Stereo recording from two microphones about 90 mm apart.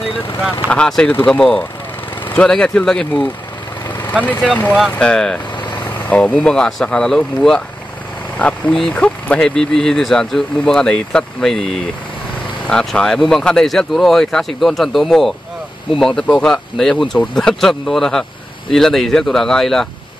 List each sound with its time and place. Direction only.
0.7 s speech: 10° left (ahead or behind)
4.2 s speech: 15° left (ahead or behind)